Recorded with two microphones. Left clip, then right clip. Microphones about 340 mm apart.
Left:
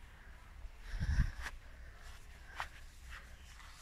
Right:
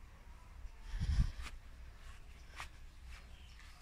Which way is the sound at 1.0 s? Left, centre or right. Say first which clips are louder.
Left 3 dB; centre.